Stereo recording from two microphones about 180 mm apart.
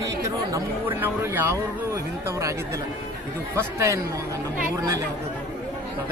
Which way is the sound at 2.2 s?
15° right (ahead or behind).